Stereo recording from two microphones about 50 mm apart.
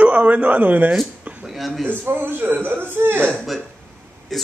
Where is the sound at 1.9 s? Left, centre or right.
Right.